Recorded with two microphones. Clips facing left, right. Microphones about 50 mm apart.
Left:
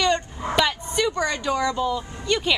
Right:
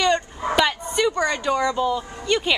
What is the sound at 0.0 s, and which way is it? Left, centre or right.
A woman's voice, centre.